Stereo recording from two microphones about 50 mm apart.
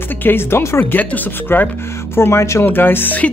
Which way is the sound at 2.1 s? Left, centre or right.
Left.